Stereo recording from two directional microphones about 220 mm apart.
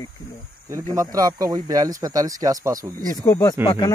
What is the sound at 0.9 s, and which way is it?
Speech, 15° right (ahead or behind).